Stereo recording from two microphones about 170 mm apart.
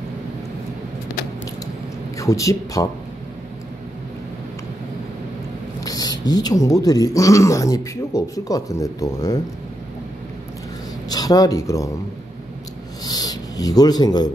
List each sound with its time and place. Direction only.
2.1 s speech: 20° left (ahead or behind)
5.8 s speech: 20° left (ahead or behind)
11.1 s speech: 20° left (ahead or behind)
13.0 s a sound: 20° left (ahead or behind)